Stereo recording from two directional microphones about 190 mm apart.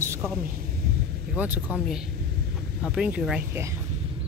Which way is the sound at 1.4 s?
5° right (ahead or behind).